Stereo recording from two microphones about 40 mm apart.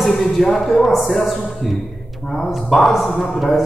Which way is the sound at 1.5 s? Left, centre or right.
Centre.